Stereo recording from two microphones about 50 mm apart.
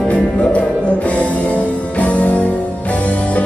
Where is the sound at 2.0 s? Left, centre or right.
Left.